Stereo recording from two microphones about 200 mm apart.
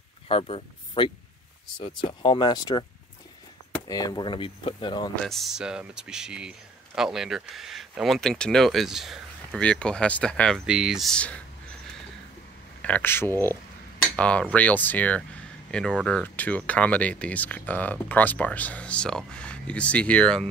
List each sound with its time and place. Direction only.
0.3 s speech: 30° left (ahead or behind)
3.9 s speech: 20° left (ahead or behind)
5.2 s speech: centre (ahead or behind)
12.8 s speech: 10° left (ahead or behind)